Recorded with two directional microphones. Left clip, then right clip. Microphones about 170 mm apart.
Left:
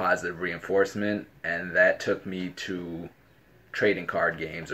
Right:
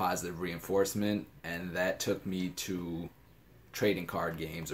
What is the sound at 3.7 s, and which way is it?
Speech, 20° right (ahead or behind).